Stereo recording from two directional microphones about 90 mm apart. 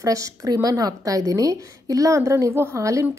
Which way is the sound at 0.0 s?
40° right (ahead or behind).